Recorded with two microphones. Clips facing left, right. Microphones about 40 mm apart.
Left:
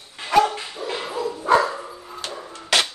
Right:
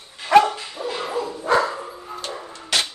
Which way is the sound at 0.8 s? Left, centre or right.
Right.